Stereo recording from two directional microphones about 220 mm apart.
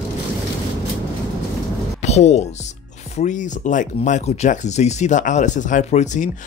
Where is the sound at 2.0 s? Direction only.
30° left (ahead or behind).